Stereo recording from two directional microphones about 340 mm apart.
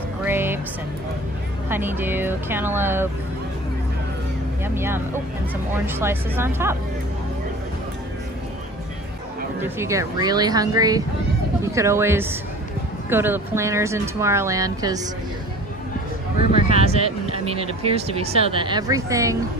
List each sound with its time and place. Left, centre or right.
0.2 s music: centre
1.7 s speech: centre
4.6 s speech: centre
9.6 s speech: centre
16.6 s speech: centre